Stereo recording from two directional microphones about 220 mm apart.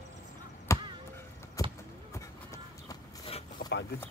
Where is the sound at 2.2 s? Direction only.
15° left (ahead or behind).